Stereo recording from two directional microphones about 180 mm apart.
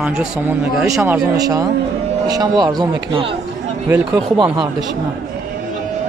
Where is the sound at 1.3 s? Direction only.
20° right (ahead or behind).